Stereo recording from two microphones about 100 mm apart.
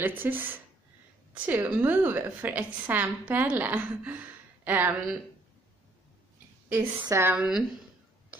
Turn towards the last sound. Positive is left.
turn(degrees=-5)  # may be behind; listen again after turning